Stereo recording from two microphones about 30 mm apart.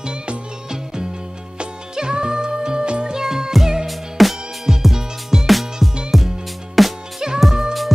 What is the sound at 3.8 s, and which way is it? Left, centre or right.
Music, centre.